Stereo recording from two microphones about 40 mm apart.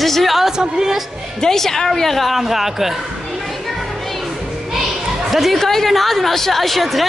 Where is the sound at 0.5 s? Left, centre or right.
Centre.